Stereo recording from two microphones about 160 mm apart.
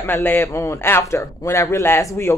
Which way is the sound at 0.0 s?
10° left (ahead or behind).